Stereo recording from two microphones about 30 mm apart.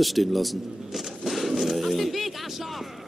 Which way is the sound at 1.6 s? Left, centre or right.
Centre.